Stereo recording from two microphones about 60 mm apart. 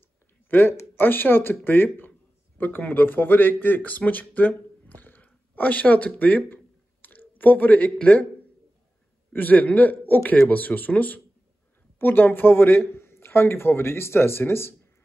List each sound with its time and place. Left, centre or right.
0.5 s speech: left
9.3 s a man's voice: left